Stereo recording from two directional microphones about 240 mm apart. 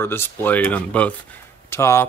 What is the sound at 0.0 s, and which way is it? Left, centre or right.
Speech, centre.